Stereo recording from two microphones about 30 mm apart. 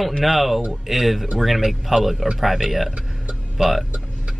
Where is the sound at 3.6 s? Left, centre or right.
Right.